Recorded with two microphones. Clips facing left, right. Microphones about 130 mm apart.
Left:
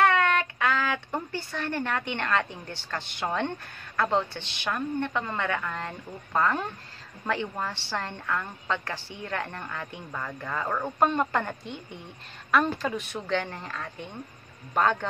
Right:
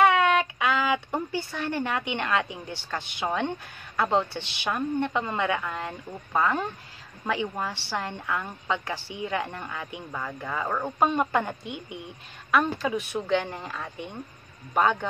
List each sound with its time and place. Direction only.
0.0 s a woman's voice: 10° right (ahead or behind)